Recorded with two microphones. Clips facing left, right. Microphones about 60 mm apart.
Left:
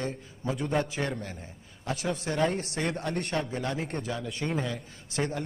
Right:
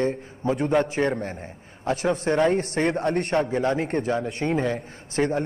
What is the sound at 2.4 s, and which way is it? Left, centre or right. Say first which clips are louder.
A man's voice: right 7 dB; right.